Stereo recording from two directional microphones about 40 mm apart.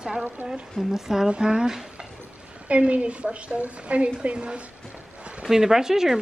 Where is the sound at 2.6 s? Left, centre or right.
Right.